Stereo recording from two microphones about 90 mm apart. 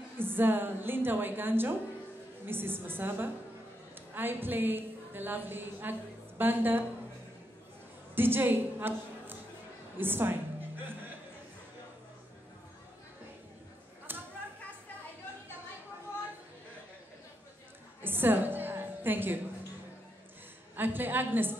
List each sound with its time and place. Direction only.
0.2 s a woman's voice: 25° right (ahead or behind)
8.1 s a woman's voice: 25° right (ahead or behind)
14.1 s a sound: 25° right (ahead or behind)
18.0 s music: 25° right (ahead or behind)
20.7 s a woman's voice: 20° right (ahead or behind)